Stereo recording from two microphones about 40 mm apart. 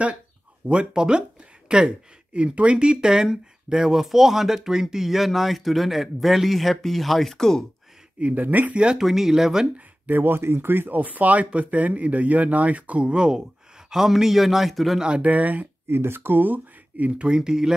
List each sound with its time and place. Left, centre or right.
0.7 s speech: right; by 7.6 s centre
8.2 s speech: right
8.9 s speech: centre
10.1 s speech: right
10.9 s speech: right
13.8 s speech: centre
15.0 s speech: right
15.2 s speech: right
15.9 s speech: right
17.2 s speech: centre